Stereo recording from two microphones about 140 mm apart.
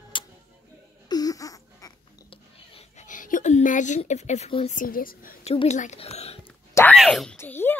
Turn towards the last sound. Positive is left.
turn(degrees=15)  # may be behind; listen again after turning